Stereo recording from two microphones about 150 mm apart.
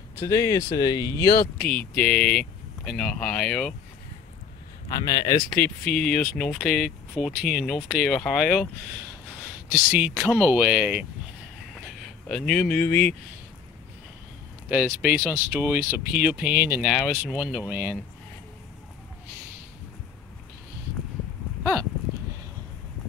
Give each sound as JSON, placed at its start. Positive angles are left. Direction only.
{"t": 0.1, "sound": "speech", "side_deg": 20}
{"t": 1.6, "sound": "speech", "side_deg": 5}
{"t": 4.9, "sound": "speech", "side_deg": 25}
{"t": 5.4, "sound": "speech", "side_deg": 10}
{"t": 9.9, "sound": "speech", "side_deg": -10}
{"t": 11.8, "sound": "speech", "side_deg": 5}
{"t": 15.0, "sound": "speech", "side_deg": -5}
{"t": 16.9, "sound": "speech", "side_deg": 0}